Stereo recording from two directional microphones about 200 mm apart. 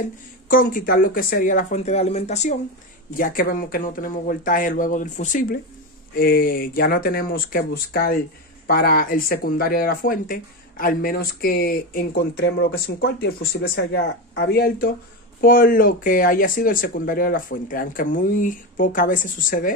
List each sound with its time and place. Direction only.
0.5 s speech: 45° left (ahead or behind)